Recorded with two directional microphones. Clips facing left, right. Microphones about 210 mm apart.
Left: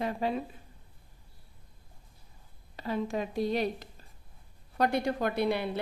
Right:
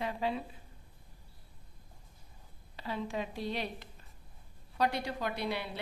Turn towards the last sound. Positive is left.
turn(degrees=50)  # may be behind; listen again after turning